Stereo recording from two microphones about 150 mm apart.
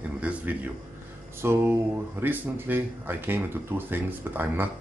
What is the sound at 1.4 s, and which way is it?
Speech, 15° right (ahead or behind).